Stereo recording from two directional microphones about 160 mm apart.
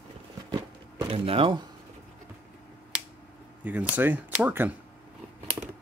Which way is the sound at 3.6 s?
10° right (ahead or behind).